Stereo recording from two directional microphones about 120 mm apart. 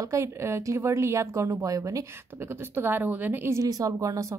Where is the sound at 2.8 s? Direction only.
15° right (ahead or behind).